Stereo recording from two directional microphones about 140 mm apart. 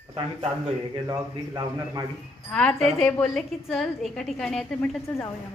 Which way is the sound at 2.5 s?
5° left (ahead or behind).